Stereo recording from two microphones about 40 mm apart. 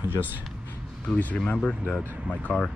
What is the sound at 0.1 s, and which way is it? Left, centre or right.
Speech, right.